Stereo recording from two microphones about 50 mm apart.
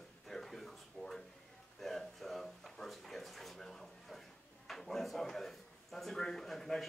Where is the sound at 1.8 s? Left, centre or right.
Centre.